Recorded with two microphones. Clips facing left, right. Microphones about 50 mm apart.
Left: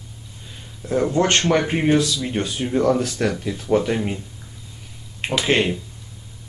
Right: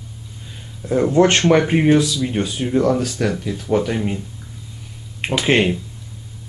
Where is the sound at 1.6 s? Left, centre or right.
Centre.